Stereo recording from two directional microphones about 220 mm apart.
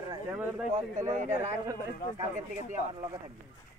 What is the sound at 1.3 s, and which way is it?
Speech, 10° right (ahead or behind).